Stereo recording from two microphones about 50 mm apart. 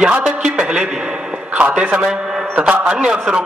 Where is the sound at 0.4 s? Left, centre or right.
Centre.